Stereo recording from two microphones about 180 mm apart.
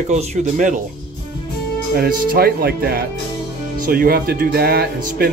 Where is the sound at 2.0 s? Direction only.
55° right (ahead or behind).